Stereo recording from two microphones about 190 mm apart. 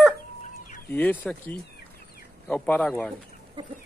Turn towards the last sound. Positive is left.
turn(degrees=5)  # may be behind; listen again after turning